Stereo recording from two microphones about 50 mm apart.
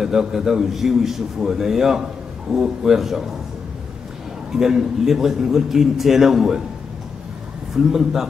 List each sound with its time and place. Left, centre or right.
0.0 s a man's voice: centre
4.5 s a man's voice: centre
7.7 s a man's voice: centre